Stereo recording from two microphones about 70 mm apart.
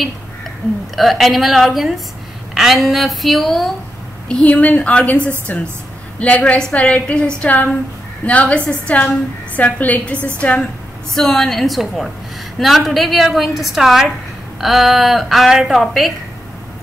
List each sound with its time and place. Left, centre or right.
0.9 s a woman's voice: centre
4.3 s a woman's voice: centre
11.1 s a woman's voice: centre